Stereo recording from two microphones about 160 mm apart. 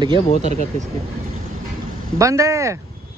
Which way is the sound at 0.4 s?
45° right (ahead or behind).